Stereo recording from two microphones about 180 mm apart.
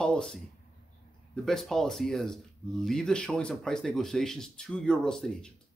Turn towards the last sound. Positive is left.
turn(degrees=5)  # may be behind; listen again after turning